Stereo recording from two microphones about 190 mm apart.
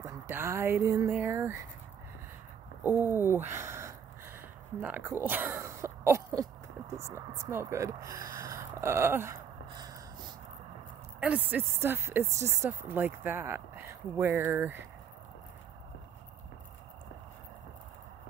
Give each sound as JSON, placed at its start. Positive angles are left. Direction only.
{"t": 0.0, "sound": "speech", "side_deg": -15}
{"t": 2.8, "sound": "a sound", "side_deg": -10}
{"t": 4.8, "sound": "speech", "side_deg": -10}
{"t": 9.7, "sound": "gasp", "side_deg": -20}
{"t": 11.1, "sound": "speech", "side_deg": -5}